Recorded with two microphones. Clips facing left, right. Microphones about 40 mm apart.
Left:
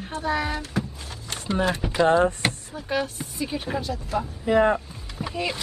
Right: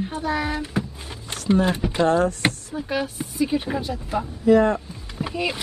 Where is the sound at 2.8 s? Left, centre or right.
Centre.